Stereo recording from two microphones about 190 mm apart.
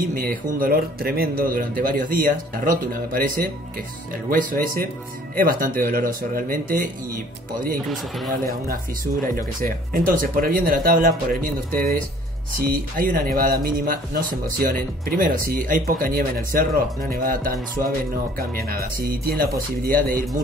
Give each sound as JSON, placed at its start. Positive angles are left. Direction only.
{"t": 0.0, "sound": "speech", "side_deg": -50}
{"t": 8.5, "sound": "speech", "side_deg": -50}